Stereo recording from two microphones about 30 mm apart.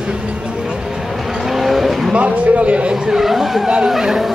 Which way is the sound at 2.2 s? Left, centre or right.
Right.